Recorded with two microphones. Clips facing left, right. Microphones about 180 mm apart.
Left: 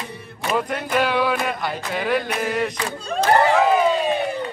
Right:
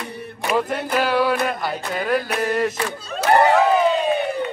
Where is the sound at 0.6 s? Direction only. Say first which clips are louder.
Even; centre (ahead or behind).